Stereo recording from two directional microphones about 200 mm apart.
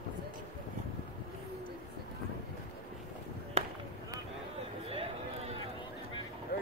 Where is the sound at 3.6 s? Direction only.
30° right (ahead or behind).